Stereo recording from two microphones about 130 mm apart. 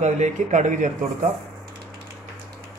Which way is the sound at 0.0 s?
65° right (ahead or behind).